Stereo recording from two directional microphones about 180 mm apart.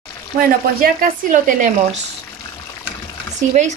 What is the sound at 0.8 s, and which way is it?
Speech, 50° right (ahead or behind).